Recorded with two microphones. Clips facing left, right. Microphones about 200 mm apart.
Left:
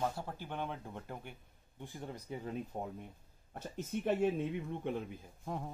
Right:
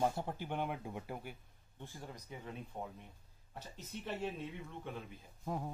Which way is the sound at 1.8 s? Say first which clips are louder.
Left 4 dB; 15° left (ahead or behind).